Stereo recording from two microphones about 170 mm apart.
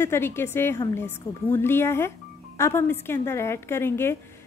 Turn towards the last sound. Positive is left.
turn(degrees=15)  # may be behind; listen again after turning